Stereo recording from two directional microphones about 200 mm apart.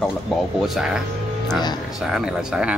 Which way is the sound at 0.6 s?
Centre (ahead or behind).